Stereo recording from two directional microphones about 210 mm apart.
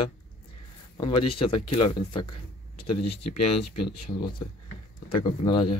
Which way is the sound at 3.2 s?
50° left (ahead or behind).